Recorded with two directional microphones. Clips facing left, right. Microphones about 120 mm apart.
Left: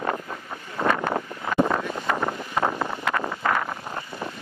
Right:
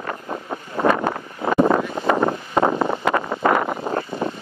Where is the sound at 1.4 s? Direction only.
35° right (ahead or behind).